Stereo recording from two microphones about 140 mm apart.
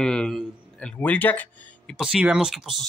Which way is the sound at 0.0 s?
5° left (ahead or behind).